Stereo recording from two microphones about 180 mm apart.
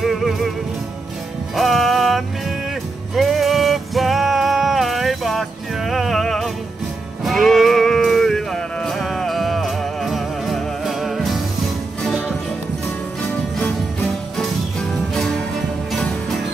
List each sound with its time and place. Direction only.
0.0 s music: centre (ahead or behind)
1.6 s music: centre (ahead or behind)
7.2 s sheep: centre (ahead or behind)
12.0 s music: centre (ahead or behind)
14.4 s music: centre (ahead or behind)